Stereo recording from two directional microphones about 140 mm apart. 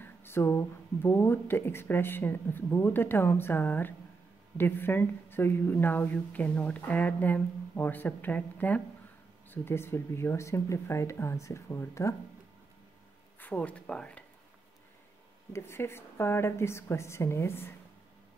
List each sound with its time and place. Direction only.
0.0 s speech: 15° left (ahead or behind)
13.4 s speech: 10° left (ahead or behind)
15.5 s speech: 15° left (ahead or behind)